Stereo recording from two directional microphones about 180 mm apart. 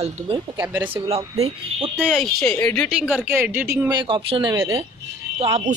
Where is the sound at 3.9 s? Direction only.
30° right (ahead or behind).